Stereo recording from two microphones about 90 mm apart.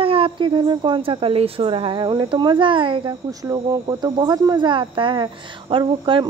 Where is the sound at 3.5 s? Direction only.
50° right (ahead or behind); by 6.2 s 70° right (ahead or behind).